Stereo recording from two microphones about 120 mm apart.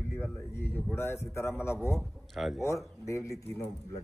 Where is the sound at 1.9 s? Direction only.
Centre (ahead or behind).